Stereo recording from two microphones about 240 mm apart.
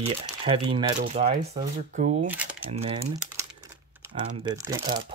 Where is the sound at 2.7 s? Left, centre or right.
Right.